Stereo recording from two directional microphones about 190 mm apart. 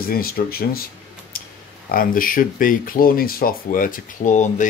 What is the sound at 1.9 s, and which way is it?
A man's voice, 50° left (ahead or behind).